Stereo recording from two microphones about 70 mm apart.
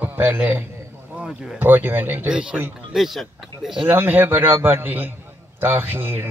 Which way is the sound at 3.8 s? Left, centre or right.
Right.